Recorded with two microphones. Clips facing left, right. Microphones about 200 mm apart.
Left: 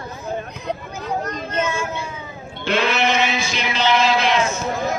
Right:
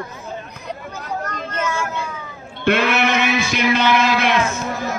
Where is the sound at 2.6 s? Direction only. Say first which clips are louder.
Right 2 dB; 60° right (ahead or behind).